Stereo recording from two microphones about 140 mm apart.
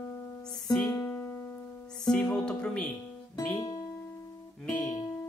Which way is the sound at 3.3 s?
25° left (ahead or behind).